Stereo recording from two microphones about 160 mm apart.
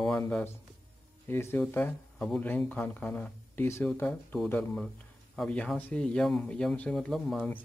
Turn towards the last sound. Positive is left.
turn(degrees=5)  # may be behind; listen again after turning